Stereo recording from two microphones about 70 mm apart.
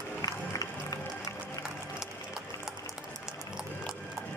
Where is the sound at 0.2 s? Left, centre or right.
Left.